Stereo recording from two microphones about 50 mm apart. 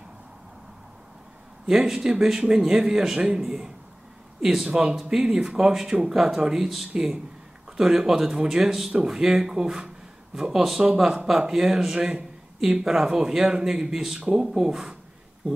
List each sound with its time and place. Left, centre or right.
1.7 s speech: centre